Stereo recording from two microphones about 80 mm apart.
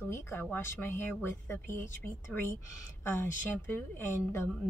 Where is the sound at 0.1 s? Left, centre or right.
Left.